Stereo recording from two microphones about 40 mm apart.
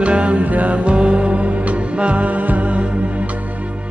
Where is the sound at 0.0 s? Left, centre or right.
Right.